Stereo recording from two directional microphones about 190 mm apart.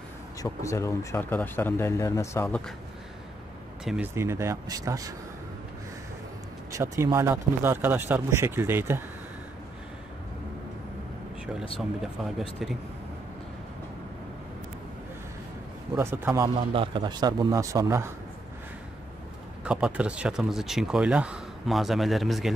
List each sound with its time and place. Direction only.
0.4 s speech: 15° left (ahead or behind)
3.8 s speech: 5° right (ahead or behind)
4.1 s speech: 15° right (ahead or behind)
6.7 s speech: 15° right (ahead or behind)
12.0 s speech: centre (ahead or behind)
16.0 s speech: 10° right (ahead or behind)
16.7 s a man's voice: 25° right (ahead or behind)
19.6 s speech: 5° right (ahead or behind)